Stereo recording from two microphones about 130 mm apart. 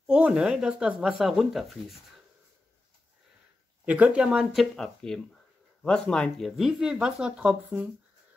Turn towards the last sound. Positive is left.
turn(degrees=-10)  # may be behind; listen again after turning